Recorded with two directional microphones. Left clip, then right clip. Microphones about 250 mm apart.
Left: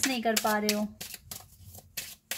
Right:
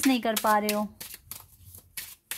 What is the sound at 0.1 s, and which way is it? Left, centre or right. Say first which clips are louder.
Speech: right 4 dB; right.